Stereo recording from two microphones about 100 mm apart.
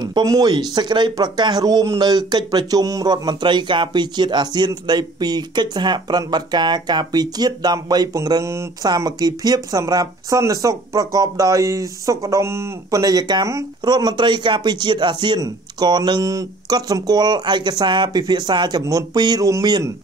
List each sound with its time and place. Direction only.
0.0 s speech: 40° right (ahead or behind)